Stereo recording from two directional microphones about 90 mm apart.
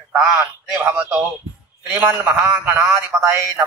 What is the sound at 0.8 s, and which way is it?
Speech, 10° right (ahead or behind).